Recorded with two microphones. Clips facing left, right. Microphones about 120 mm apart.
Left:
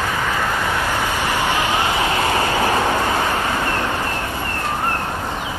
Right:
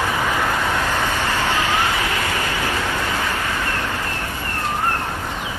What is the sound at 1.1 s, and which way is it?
Vehicle, 15° left (ahead or behind).